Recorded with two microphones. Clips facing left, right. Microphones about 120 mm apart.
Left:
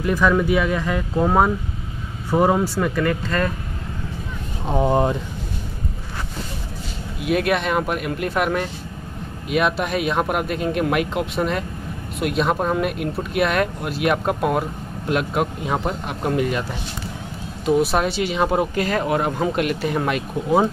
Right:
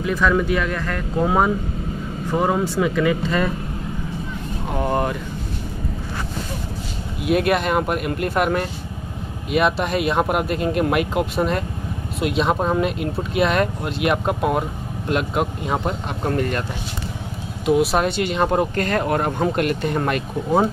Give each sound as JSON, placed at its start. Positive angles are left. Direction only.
{"t": 0.1, "sound": "speech", "side_deg": 10}
{"t": 4.7, "sound": "speech", "side_deg": 15}
{"t": 7.2, "sound": "speech", "side_deg": 0}
{"t": 17.6, "sound": "speech", "side_deg": 0}